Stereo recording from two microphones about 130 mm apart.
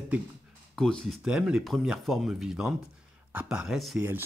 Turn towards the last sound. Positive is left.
turn(degrees=0)  # may be behind; listen again after turning